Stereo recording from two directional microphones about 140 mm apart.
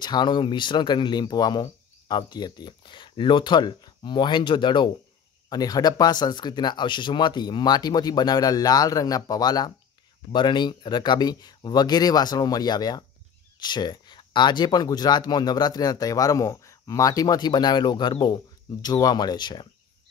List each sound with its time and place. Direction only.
0.0 s speech: 30° left (ahead or behind)